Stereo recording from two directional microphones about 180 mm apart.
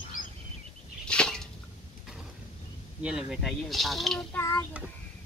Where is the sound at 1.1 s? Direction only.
5° left (ahead or behind).